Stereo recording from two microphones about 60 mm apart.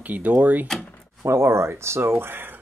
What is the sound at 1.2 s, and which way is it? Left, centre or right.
Speech, right.